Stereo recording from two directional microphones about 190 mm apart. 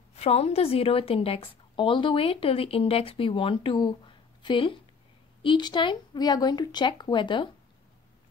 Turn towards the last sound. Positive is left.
turn(degrees=25)  # may be behind; listen again after turning